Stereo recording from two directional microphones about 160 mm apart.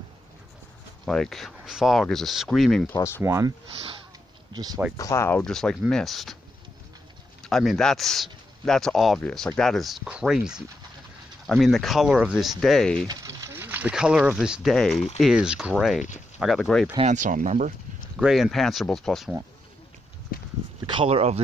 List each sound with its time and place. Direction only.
1.0 s speech: 5° left (ahead or behind)
2.9 s speech: 15° left (ahead or behind)
3.2 s speech: 15° right (ahead or behind)
4.6 s speech: 25° right (ahead or behind)
4.9 s speech: 20° left (ahead or behind)
5.4 s speech: 5° left (ahead or behind)
7.4 s speech: centre (ahead or behind)
13.1 s speech: 20° right (ahead or behind); by 16.8 s centre (ahead or behind)
17.0 s speech: 50° right (ahead or behind)
18.1 s speech: 5° right (ahead or behind)
20.8 s speech: 30° right (ahead or behind)